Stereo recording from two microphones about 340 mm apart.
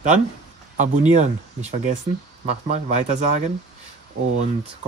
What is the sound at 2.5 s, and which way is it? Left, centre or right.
Speech, centre.